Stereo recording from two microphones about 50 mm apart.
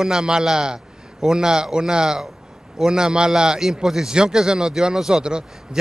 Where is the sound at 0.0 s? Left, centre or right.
Centre.